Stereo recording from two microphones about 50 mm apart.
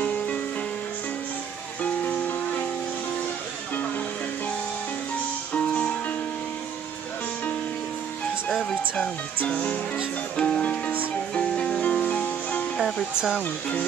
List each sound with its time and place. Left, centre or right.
0.0 s music: left
1.8 s music: left
5.5 s music: left
9.5 s speech: left
11.3 s music: centre
11.8 s music: left
12.7 s music: centre
13.1 s speech: centre